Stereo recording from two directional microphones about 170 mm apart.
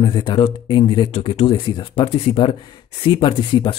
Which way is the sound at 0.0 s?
25° left (ahead or behind).